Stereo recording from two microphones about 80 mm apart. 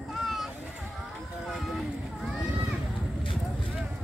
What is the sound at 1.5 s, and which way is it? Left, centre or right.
Run, centre.